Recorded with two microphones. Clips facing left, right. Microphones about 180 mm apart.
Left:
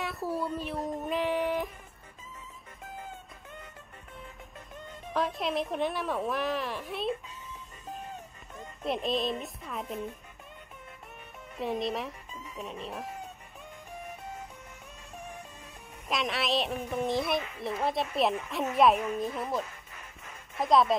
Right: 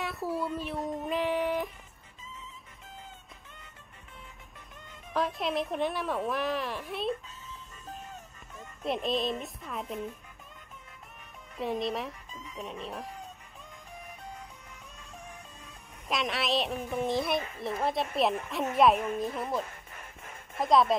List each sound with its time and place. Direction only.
0.0 s speech: centre (ahead or behind)
5.1 s a woman's voice: centre (ahead or behind)
8.8 s a woman's voice: centre (ahead or behind)
11.5 s a woman's voice: centre (ahead or behind)
16.1 s a woman's voice: centre (ahead or behind)
19.6 s music: 50° right (ahead or behind)
20.5 s a woman's voice: centre (ahead or behind)